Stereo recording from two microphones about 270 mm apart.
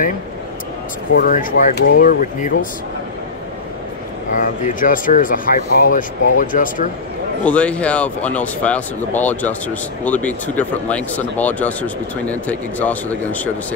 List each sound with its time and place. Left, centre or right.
1.1 s speech: left
4.4 s speech: left
7.4 s speech: centre